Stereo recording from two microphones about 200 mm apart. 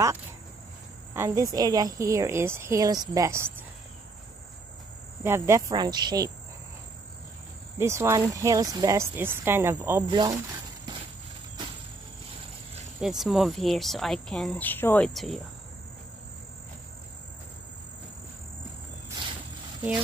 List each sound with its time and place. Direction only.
1.1 s speech: 15° right (ahead or behind)
5.2 s speech: 10° right (ahead or behind)
7.8 s speech: 15° right (ahead or behind)
10.0 s speech: 20° right (ahead or behind)
13.0 s speech: centre (ahead or behind)